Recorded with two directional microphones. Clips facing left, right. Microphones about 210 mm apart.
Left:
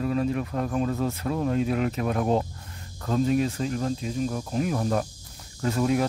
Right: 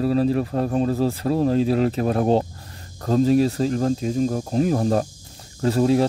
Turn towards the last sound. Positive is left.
turn(degrees=-30)  # may be behind; listen again after turning